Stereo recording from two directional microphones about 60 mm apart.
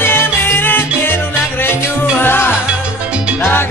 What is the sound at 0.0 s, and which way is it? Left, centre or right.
Salsa music, left.